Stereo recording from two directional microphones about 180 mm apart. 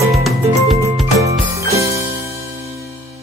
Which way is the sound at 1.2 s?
15° right (ahead or behind).